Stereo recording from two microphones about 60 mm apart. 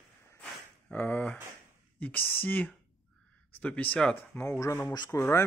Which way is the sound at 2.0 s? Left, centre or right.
Left.